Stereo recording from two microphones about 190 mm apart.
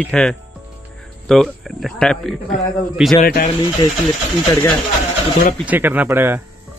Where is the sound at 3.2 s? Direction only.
50° left (ahead or behind).